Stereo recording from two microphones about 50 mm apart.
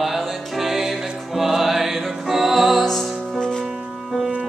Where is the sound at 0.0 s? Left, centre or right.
Centre.